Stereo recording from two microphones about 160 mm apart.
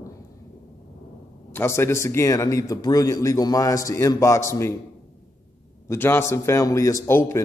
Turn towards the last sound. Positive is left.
turn(degrees=15)  # may be behind; listen again after turning